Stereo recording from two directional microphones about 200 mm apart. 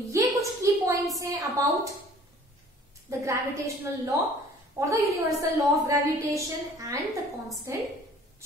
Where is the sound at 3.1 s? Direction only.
15° right (ahead or behind).